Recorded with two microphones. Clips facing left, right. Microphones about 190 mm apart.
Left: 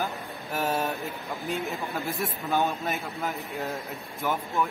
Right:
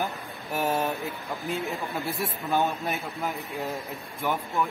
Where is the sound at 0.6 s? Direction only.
15° right (ahead or behind).